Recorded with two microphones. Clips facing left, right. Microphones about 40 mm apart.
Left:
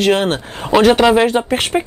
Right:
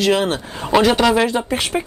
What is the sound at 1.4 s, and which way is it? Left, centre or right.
Speech, left.